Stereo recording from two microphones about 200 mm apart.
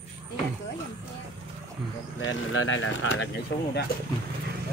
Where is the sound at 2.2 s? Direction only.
80° left; by 3.7 s 65° left (ahead or behind).